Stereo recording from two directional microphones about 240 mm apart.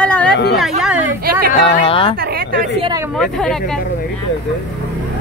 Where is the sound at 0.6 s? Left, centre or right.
Centre.